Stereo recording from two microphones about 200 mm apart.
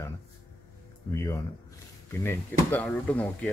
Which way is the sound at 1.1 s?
15° left (ahead or behind).